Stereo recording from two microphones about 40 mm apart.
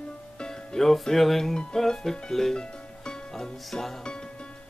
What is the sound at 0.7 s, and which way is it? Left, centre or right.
Speech, centre.